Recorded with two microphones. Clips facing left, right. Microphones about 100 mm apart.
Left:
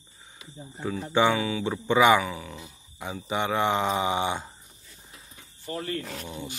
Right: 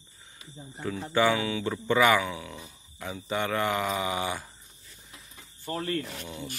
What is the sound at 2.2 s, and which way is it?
Speech, centre (ahead or behind).